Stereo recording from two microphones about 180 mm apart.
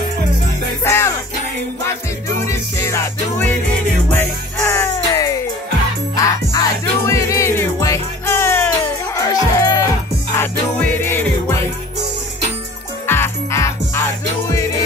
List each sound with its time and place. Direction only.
0.8 s music: 15° left (ahead or behind)
2.2 s music: 15° left (ahead or behind)
13.0 s music: 15° left (ahead or behind)